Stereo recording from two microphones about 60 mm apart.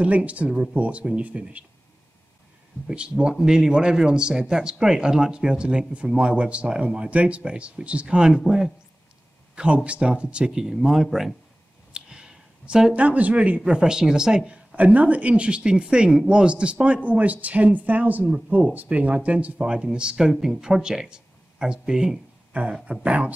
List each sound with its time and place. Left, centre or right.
0.0 s speech: right
2.9 s speech: centre
9.8 s speech: centre
11.9 s a sound: centre
13.0 s speech: right
22.5 s a sound: right
22.8 s speech: right